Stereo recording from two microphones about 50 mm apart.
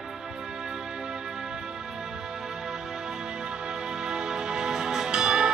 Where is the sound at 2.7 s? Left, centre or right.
Centre.